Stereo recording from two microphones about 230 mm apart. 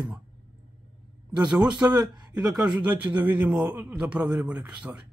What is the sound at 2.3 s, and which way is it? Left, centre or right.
Speech, centre.